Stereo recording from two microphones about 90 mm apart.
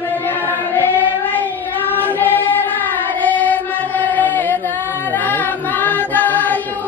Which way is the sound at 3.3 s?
20° left (ahead or behind).